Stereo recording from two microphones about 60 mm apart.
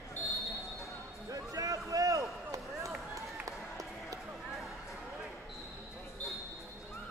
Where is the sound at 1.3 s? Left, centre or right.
Right.